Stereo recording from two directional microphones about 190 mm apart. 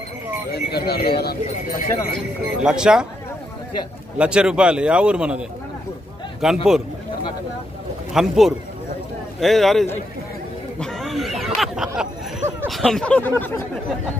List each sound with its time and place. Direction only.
0.5 s speech: 55° left (ahead or behind)
2.1 s a man's voice: 5° right (ahead or behind)
4.2 s a man's voice: 5° right (ahead or behind)
6.4 s a man's voice: centre (ahead or behind)
8.1 s a man's voice: centre (ahead or behind)
10.8 s a sound: 5° left (ahead or behind)
12.6 s a man's voice: centre (ahead or behind)